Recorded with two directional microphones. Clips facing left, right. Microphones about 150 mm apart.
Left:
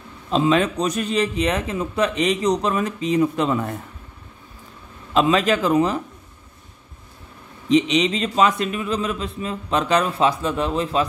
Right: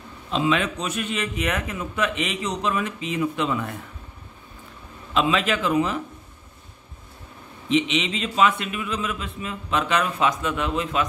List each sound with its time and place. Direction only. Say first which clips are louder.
0.3 s a man's voice: left 4 dB; 40° left (ahead or behind)
5.1 s a man's voice: left 4 dB; 40° left (ahead or behind)
7.6 s a man's voice: left 5 dB; 35° left (ahead or behind)